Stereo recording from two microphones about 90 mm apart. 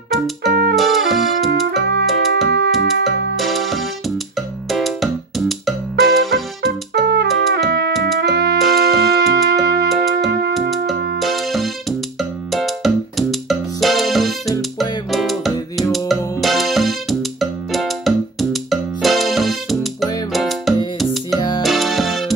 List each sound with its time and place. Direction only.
0.1 s music: centre (ahead or behind)
21.4 s music: 60° left (ahead or behind)
21.6 s music: centre (ahead or behind)